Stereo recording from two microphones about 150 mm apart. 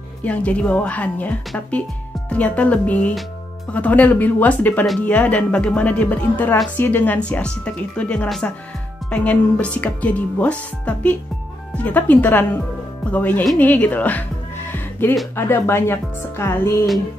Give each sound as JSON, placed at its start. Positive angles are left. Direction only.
{"t": 0.2, "sound": "speech", "side_deg": 10}
{"t": 14.7, "sound": "music", "side_deg": 15}
{"t": 15.3, "sound": "speech", "side_deg": 15}